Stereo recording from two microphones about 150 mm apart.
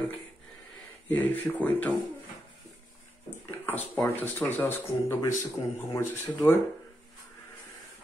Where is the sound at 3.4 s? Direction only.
15° left (ahead or behind).